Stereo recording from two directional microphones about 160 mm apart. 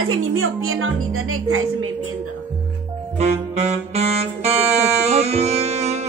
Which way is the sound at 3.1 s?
45° right (ahead or behind).